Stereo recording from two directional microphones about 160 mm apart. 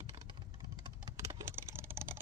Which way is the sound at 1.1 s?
30° right (ahead or behind).